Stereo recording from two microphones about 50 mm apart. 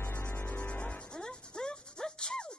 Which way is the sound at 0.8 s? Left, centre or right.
Centre.